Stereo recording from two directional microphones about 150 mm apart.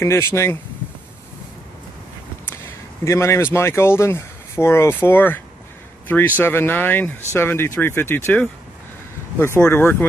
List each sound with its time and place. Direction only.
0.0 s speech: 15° left (ahead or behind)
3.1 s speech: 20° left (ahead or behind)